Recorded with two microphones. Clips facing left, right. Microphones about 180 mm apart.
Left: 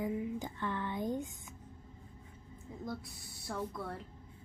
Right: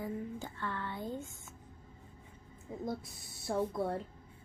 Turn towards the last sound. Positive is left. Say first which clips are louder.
# right 6 dB
turn(degrees=-25)  # may be behind; listen again after turning